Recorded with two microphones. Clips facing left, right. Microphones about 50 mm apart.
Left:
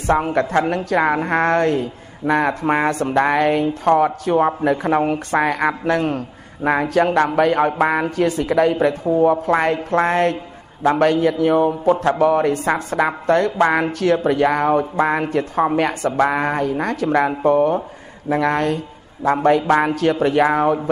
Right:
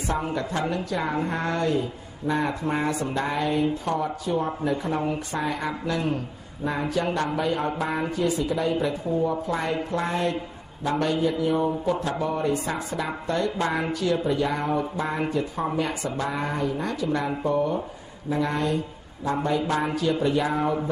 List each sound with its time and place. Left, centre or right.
0.0 s a woman's voice: left